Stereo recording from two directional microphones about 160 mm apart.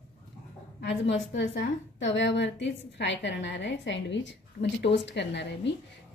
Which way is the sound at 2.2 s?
90° left.